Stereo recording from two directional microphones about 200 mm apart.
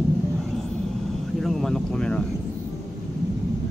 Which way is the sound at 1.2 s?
Centre (ahead or behind).